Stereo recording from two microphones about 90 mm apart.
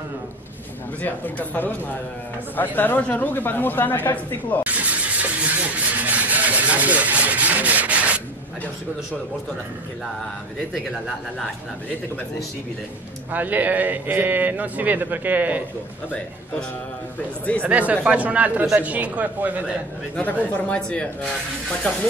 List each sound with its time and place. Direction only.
1.0 s speech: 20° left (ahead or behind)
4.6 s vehicle: 15° right (ahead or behind)
10.7 s speech: centre (ahead or behind)
13.3 s a man's voice: 20° right (ahead or behind)
17.6 s speech: 15° right (ahead or behind)
20.2 s speech: 15° left (ahead or behind)